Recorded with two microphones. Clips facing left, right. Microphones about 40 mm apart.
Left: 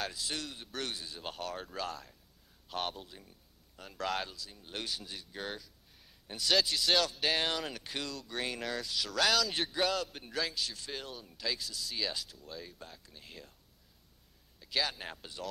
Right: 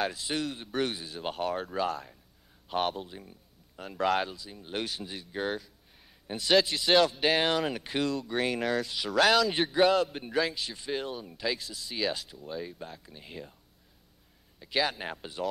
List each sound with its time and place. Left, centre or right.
0.0 s speech: centre
14.6 s speech: right